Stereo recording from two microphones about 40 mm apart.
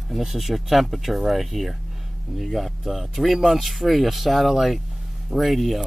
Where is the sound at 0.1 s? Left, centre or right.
Centre.